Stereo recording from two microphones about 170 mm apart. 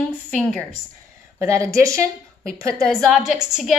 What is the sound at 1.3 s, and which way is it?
A woman's voice, 20° right (ahead or behind).